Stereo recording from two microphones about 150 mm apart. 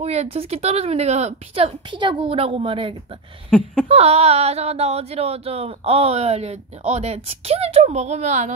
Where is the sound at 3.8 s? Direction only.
45° right (ahead or behind).